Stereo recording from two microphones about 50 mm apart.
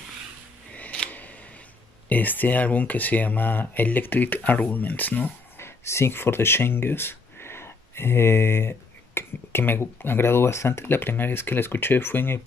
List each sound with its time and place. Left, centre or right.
2.0 s speech: left
5.6 s speech: left
10.9 s speech: left